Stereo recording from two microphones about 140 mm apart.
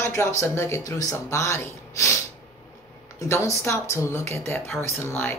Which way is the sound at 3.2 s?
20° left (ahead or behind).